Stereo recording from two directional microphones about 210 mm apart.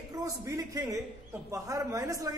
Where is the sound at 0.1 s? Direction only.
15° right (ahead or behind).